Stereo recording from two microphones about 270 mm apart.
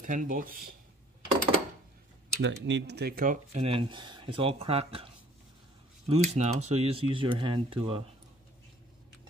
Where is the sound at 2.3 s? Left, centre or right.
Right.